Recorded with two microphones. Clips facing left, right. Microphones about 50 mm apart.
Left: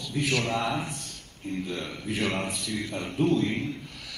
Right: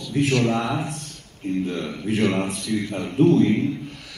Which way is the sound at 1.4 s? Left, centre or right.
Right.